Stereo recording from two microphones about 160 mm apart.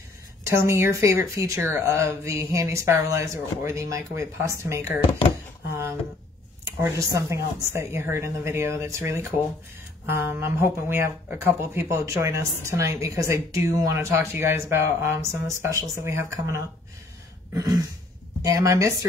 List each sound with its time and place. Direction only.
0.4 s a woman's voice: 20° right (ahead or behind)
5.7 s a sound: 15° right (ahead or behind)
6.6 s a woman's voice: 20° right (ahead or behind)